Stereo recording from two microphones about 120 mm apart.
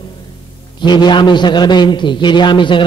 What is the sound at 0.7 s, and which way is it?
A man's voice, 40° left (ahead or behind).